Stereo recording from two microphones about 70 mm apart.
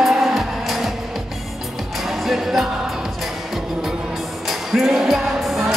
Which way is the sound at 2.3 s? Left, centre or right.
Centre.